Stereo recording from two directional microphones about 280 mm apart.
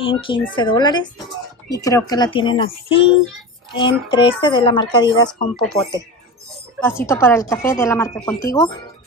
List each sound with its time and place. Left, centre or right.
0.0 s speech: centre